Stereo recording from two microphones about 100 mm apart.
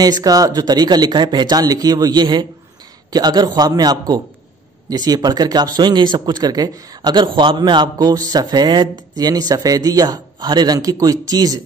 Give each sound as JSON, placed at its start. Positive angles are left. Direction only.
{"t": 0.0, "sound": "speech", "side_deg": -40}